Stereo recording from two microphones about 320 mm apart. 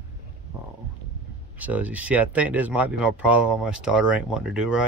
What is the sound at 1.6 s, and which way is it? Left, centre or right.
Speech, centre.